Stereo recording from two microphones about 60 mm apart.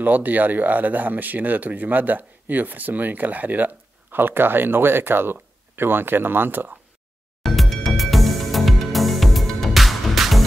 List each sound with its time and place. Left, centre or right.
0.0 s speech: right
7.4 s music: centre